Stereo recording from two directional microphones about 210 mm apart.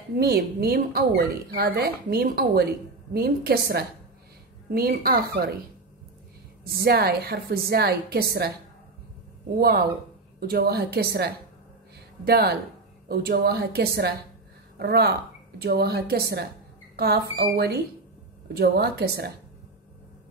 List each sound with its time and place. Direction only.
0.2 s a woman's voice: 50° right (ahead or behind)
6.6 s a woman's voice: 50° right (ahead or behind)
10.4 s a woman's voice: 50° right (ahead or behind)